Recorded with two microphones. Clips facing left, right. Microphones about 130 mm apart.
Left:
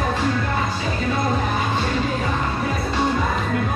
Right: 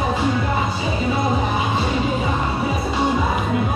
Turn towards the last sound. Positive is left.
turn(degrees=-10)  # may be behind; listen again after turning